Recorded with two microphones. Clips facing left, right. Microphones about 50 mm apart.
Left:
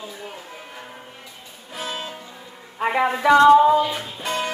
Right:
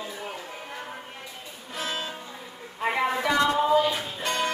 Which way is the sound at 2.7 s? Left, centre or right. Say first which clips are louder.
Left 4 dB; left.